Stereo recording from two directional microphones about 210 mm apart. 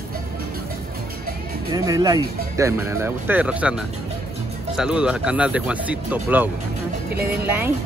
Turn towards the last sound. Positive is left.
turn(degrees=-10)  # may be behind; listen again after turning